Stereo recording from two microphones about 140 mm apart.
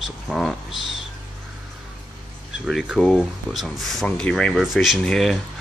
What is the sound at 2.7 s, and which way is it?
Speech, centre (ahead or behind).